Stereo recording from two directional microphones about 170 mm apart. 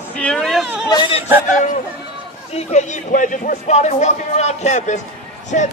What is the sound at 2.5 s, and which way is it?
Speech, 45° left (ahead or behind).